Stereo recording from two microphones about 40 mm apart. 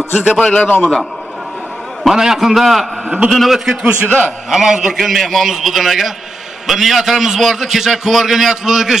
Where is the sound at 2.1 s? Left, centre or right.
Centre.